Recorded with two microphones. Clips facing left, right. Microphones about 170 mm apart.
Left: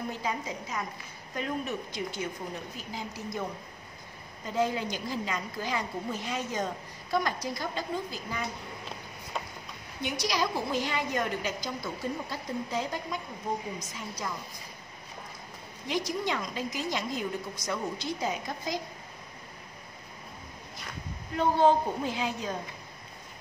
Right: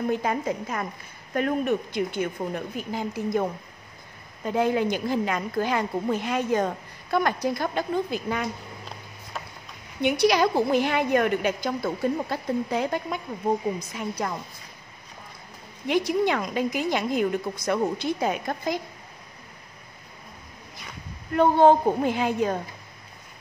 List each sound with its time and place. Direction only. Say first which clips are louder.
0.1 s a woman's voice: right 8 dB; 55° right (ahead or behind)
4.5 s a woman's voice: right 6 dB; 60° right (ahead or behind)
10.0 s a woman's voice: right 10 dB; 60° right (ahead or behind)
15.9 s a woman's voice: right 8 dB; 60° right (ahead or behind)
21.4 s a woman's voice: right 6 dB; 55° right (ahead or behind)